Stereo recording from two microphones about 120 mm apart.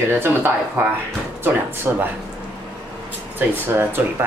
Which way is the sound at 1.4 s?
20° right (ahead or behind).